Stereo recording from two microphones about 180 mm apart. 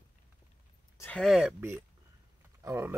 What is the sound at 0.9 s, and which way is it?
Speech, 10° left (ahead or behind).